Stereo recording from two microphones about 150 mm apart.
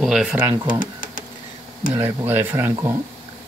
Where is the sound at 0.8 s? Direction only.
60° left (ahead or behind).